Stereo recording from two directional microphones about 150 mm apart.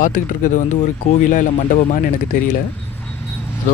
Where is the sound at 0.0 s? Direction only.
60° left (ahead or behind).